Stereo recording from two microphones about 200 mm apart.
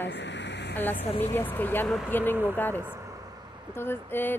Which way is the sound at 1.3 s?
10° left (ahead or behind).